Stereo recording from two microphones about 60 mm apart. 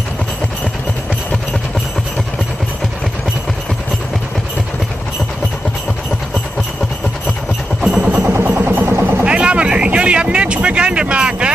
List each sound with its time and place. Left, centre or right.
7.8 s music: centre
8.5 s vehicle: right
9.2 s a sound: centre